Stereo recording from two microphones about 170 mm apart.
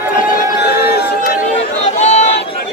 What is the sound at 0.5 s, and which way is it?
Chatter, 70° left (ahead or behind).